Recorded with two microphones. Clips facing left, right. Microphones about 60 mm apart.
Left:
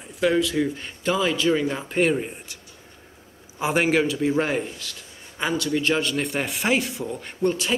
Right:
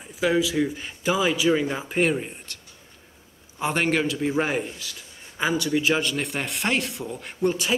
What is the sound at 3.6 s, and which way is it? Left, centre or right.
Speech, centre.